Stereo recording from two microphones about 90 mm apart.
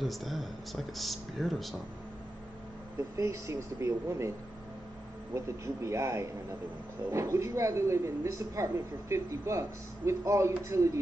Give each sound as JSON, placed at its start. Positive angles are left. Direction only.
{"t": 0.0, "sound": "speech", "side_deg": 0}
{"t": 3.2, "sound": "speech", "side_deg": -35}
{"t": 5.3, "sound": "speech", "side_deg": -35}